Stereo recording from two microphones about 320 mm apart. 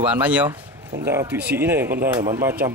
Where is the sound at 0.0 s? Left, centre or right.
Centre.